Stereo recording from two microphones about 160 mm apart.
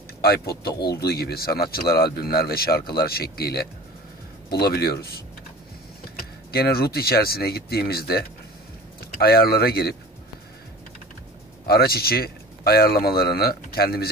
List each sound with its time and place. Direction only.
0.2 s speech: 80° left
6.5 s speech: 75° left (ahead or behind)
11.6 s speech: 75° left (ahead or behind)